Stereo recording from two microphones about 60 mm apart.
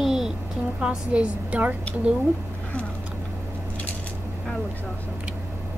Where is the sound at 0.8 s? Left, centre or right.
Centre.